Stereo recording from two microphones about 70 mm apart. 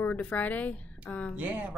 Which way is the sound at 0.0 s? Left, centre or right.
Left.